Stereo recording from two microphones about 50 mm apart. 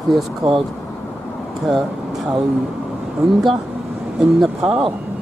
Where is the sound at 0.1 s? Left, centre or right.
Centre.